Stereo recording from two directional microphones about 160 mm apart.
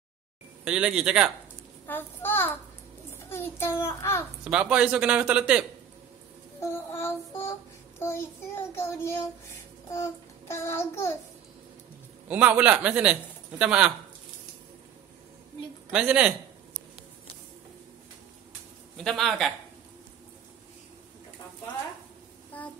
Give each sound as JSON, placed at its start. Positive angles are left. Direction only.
{"t": 0.7, "sound": "speech", "side_deg": -5}
{"t": 1.9, "sound": "a child's voice", "side_deg": 15}
{"t": 4.5, "sound": "a man's voice", "side_deg": -5}
{"t": 6.6, "sound": "child singing", "side_deg": 15}
{"t": 12.3, "sound": "a man's voice", "side_deg": -10}
{"t": 15.9, "sound": "a man's voice", "side_deg": -5}
{"t": 19.0, "sound": "speech", "side_deg": 0}